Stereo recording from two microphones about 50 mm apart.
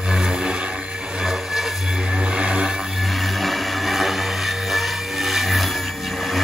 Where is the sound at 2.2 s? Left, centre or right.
Right.